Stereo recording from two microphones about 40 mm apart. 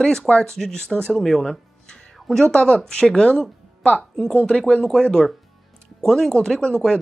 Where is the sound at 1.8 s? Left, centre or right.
Left.